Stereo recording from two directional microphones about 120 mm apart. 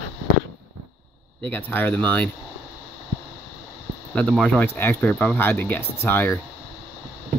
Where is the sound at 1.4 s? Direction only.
15° left (ahead or behind).